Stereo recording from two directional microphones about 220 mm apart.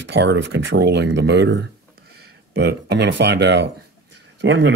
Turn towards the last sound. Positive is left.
turn(degrees=-55)  # may be behind; listen again after turning